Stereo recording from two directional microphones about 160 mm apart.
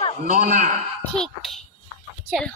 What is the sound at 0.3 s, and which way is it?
Speech, 60° right (ahead or behind).